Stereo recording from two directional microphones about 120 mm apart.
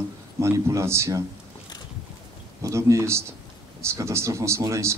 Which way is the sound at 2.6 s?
25° right (ahead or behind).